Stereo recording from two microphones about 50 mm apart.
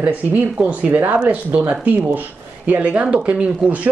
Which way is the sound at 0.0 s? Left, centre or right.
Right.